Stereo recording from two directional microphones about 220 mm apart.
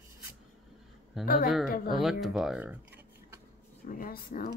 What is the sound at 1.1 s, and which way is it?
Speech, centre (ahead or behind).